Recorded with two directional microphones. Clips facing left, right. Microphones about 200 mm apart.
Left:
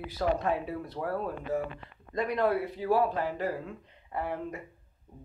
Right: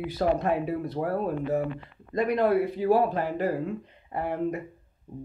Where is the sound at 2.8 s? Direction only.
45° right (ahead or behind).